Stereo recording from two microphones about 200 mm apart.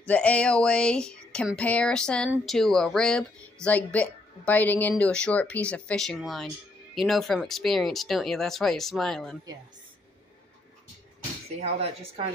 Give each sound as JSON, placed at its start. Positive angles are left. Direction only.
{"t": 0.0, "sound": "speech", "side_deg": 5}
{"t": 11.5, "sound": "speech", "side_deg": -30}